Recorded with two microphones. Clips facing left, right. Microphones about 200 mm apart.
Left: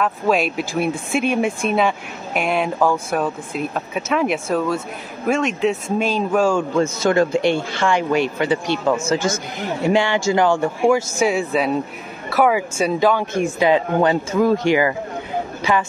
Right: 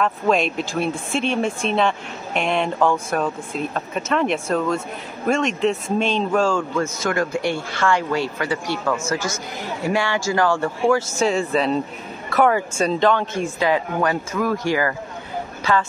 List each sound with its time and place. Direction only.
0.0 s speech: 5° left (ahead or behind)
7.0 s speech: 25° left (ahead or behind)